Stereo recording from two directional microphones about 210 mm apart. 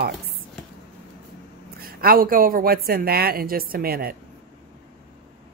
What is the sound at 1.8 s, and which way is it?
A woman's voice, 45° right (ahead or behind).